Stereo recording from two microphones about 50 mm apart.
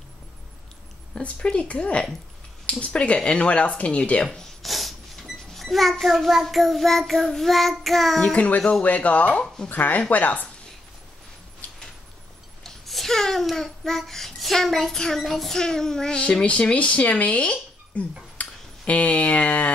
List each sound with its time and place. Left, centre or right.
1.1 s speech: left
4.6 s a child's voice: centre
8.2 s a child's voice: centre
8.5 s speech: left
12.6 s a child's voice: centre; by 19.7 s left